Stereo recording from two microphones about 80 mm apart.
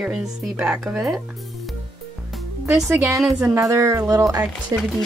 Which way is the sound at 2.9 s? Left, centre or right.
Right.